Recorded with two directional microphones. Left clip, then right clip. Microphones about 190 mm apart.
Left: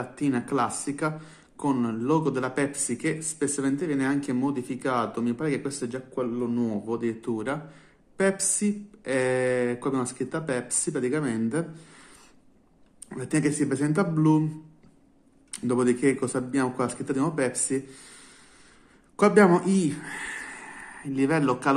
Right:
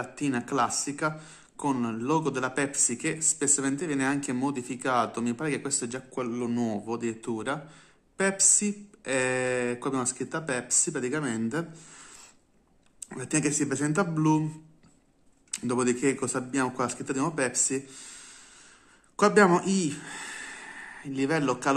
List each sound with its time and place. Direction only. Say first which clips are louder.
0.0 s speech: left 2 dB; 10° right (ahead or behind)
13.1 s speech: left 2 dB; 15° right (ahead or behind)
15.5 s speech: left 3 dB; 10° right (ahead or behind)